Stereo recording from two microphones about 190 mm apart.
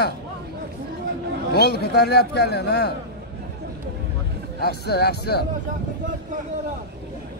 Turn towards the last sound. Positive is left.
turn(degrees=60)  # may be behind; listen again after turning